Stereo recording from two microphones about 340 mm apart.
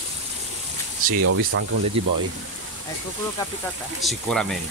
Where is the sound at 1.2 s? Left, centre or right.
Right.